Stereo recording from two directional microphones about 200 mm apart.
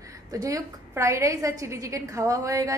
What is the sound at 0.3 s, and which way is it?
A woman's voice, 15° right (ahead or behind).